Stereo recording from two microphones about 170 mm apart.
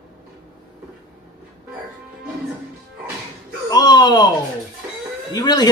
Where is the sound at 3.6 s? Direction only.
25° left (ahead or behind).